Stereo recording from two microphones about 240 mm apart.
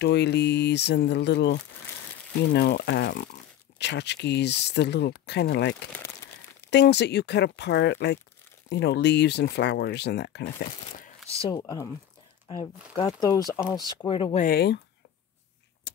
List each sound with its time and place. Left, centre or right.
0.0 s speech: left
11.0 s a sound: left
11.6 s speech: centre
14.4 s speech: left